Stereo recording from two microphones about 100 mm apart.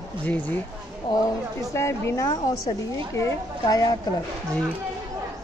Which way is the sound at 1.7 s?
25° left (ahead or behind).